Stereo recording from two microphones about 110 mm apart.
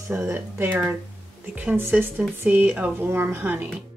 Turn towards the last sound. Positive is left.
turn(degrees=-15)  # may be behind; listen again after turning